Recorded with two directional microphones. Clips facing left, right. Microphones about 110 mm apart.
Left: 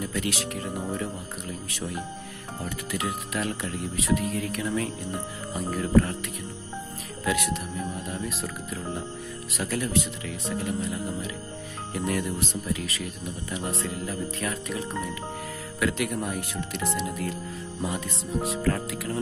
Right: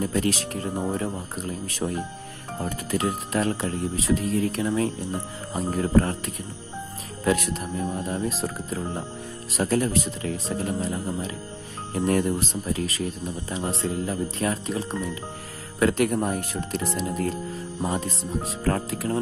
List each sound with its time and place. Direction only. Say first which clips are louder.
0.0 s speech: right 5 dB; 40° right (ahead or behind)